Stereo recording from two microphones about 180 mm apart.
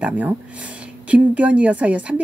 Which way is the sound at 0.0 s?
10° right (ahead or behind).